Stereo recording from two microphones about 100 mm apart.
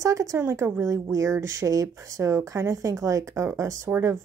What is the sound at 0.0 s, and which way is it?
Speech, 35° right (ahead or behind).